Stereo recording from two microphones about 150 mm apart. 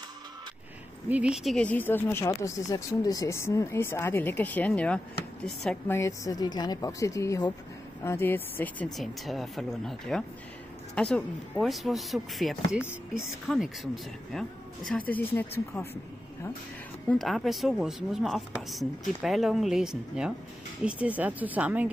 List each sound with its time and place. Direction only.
1.0 s speech: 10° right (ahead or behind)
5.9 s a woman's voice: 20° left (ahead or behind); by 13.7 s centre (ahead or behind)
14.9 s speech: 10° left (ahead or behind)
17.1 s a woman's voice: centre (ahead or behind)